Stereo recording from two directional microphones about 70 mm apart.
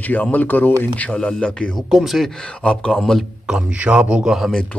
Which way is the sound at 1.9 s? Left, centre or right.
Centre.